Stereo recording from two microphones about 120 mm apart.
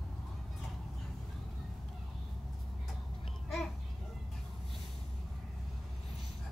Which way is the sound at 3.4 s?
Centre (ahead or behind).